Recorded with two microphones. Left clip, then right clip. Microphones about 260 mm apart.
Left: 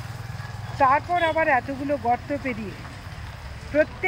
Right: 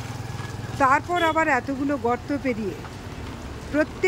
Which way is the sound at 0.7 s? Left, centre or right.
Centre.